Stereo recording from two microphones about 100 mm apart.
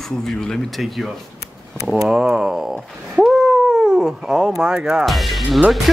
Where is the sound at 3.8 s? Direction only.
5° right (ahead or behind).